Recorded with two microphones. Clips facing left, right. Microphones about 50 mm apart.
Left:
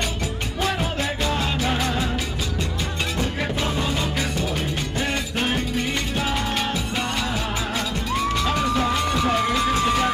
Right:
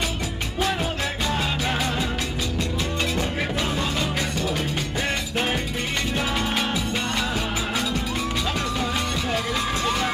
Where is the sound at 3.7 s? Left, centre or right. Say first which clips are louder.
Left 1 dB; centre.